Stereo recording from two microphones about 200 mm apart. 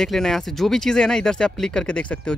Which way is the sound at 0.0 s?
Centre (ahead or behind).